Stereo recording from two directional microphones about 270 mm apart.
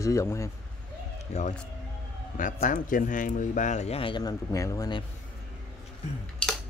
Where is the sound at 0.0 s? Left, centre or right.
Centre.